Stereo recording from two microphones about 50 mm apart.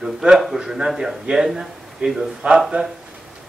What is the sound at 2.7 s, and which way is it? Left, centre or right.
Speech, right.